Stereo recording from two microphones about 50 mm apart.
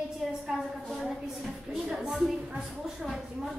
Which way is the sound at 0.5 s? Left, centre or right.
Centre.